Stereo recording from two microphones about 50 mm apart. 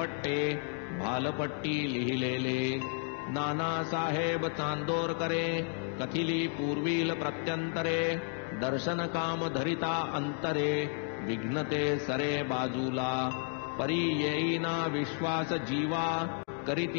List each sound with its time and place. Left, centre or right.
0.3 s music: centre
3.3 s music: centre